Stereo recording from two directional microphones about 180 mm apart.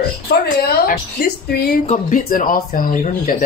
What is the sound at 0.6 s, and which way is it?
A woman's voice, 60° left (ahead or behind).